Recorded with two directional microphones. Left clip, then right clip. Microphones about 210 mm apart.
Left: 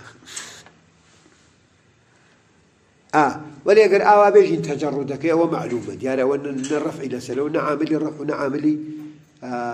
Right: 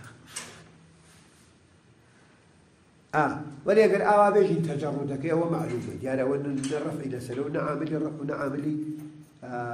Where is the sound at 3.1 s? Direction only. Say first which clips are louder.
Left 8 dB; 35° left (ahead or behind).